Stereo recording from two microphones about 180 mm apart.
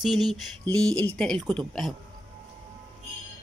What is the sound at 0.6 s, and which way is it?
Speech, 20° right (ahead or behind).